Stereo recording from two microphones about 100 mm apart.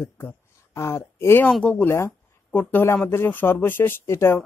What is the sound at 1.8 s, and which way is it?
Speech, 25° left (ahead or behind).